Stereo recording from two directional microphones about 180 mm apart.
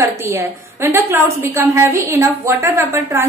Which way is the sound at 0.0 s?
15° right (ahead or behind).